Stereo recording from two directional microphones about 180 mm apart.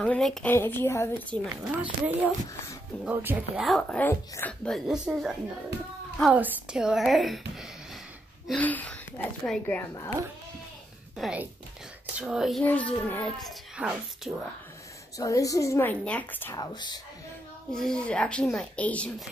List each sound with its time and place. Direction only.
0.0 s a woman's voice: 5° left (ahead or behind)
1.7 s speech: 10° right (ahead or behind)
6.3 s speech: 5° right (ahead or behind)
8.5 s a woman's voice: 10° left (ahead or behind)
11.1 s speech: centre (ahead or behind)
13.7 s speech: 5° right (ahead or behind)
15.1 s a woman's voice: 20° left (ahead or behind)
16.5 s speech: 25° left (ahead or behind)
17.7 s speech: 5° left (ahead or behind)